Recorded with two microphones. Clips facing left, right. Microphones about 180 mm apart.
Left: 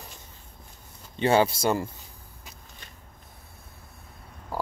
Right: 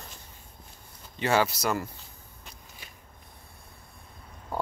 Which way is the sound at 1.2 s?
25° left (ahead or behind).